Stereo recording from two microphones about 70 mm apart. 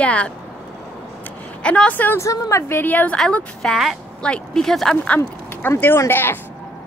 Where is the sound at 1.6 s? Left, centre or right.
Centre.